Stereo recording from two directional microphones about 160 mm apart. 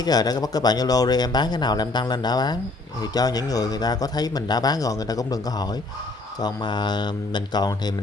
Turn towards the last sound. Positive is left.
turn(degrees=25)  # may be behind; listen again after turning